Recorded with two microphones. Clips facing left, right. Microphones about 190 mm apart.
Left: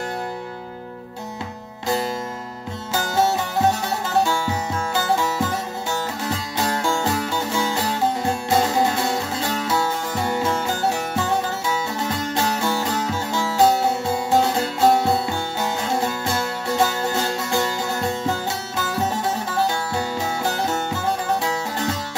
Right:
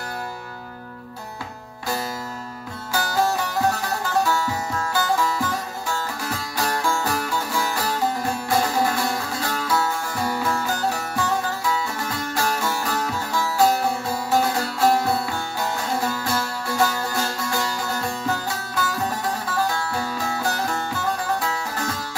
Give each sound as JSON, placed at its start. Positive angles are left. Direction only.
{"t": 2.9, "sound": "music", "side_deg": 25}